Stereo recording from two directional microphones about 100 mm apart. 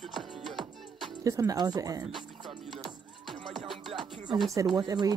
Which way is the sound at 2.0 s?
Centre (ahead or behind).